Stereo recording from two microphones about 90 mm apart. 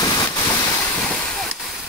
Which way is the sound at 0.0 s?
45° left (ahead or behind).